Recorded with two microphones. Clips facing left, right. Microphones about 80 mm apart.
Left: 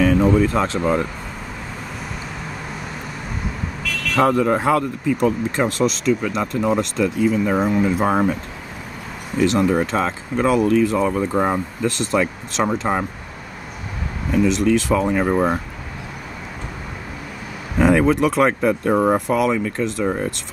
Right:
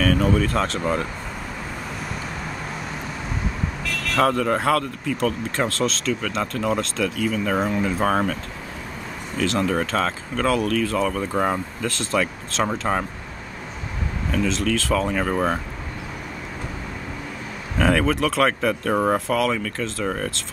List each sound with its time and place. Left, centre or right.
0.0 s speech: left
3.8 s vehicle: centre
4.3 s speech: centre
7.5 s speech: centre
9.4 s speech: centre
14.3 s speech: centre
17.7 s speech: centre